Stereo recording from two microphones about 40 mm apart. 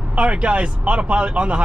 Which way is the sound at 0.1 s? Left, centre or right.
Right.